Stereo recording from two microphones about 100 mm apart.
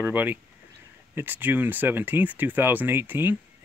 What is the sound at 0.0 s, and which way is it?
Speech, 20° right (ahead or behind).